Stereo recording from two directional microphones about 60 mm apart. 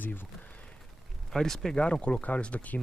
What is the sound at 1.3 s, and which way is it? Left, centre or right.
Speech, centre.